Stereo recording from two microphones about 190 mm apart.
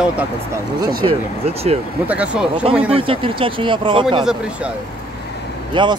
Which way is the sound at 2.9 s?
30° right (ahead or behind).